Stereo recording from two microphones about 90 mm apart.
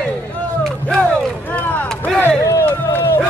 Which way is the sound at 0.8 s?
10° left (ahead or behind).